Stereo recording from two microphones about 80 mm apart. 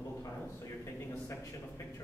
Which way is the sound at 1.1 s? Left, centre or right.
Left.